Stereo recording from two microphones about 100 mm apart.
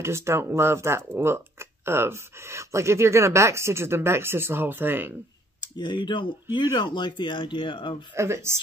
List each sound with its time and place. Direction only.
0.0 s speech: 25° right (ahead or behind)
5.6 s speech: 50° left (ahead or behind)
8.1 s speech: 25° right (ahead or behind)